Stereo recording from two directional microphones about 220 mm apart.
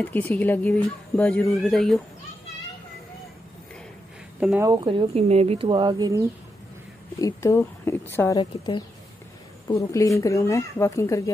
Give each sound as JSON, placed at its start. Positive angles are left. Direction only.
{"t": 0.0, "sound": "speech", "side_deg": 10}
{"t": 4.4, "sound": "speech", "side_deg": -5}
{"t": 4.6, "sound": "speech", "side_deg": -25}
{"t": 7.2, "sound": "speech", "side_deg": 15}